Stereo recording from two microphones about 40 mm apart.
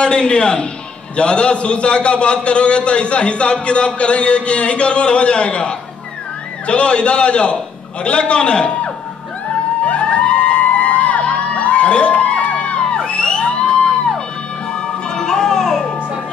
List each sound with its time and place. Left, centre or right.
0.0 s a man's voice: left
10.1 s music: left; by 15.9 s centre